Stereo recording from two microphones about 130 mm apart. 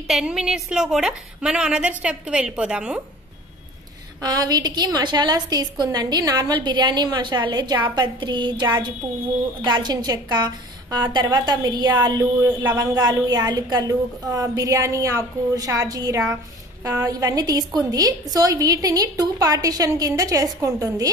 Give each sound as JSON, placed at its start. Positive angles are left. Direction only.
{"t": 0.1, "sound": "a woman's voice", "side_deg": -5}
{"t": 4.2, "sound": "a woman's voice", "side_deg": -30}